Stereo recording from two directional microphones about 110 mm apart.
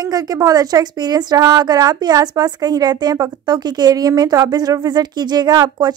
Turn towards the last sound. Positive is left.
turn(degrees=-40)  # may be behind; listen again after turning